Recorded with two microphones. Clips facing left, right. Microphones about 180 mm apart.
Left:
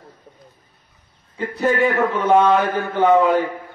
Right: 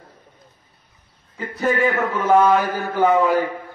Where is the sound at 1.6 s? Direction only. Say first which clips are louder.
Left 2 dB; centre (ahead or behind).